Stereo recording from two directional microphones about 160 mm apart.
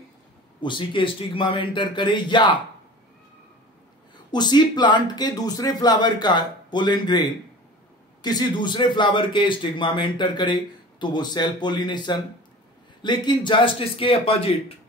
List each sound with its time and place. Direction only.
0.6 s a man's voice: 30° left (ahead or behind)
4.3 s a man's voice: 25° left (ahead or behind)
8.2 s a man's voice: 25° left (ahead or behind)